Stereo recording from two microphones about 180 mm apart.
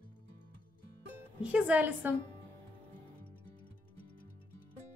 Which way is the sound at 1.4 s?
10° right (ahead or behind).